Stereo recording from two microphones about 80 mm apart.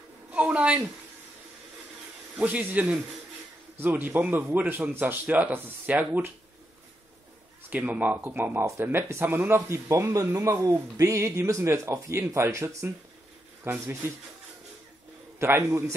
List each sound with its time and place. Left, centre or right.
0.3 s speech: centre
2.3 s speech: right
7.7 s speech: right
15.3 s a man's voice: right